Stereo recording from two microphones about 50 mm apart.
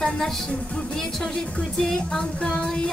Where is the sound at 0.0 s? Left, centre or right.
Centre.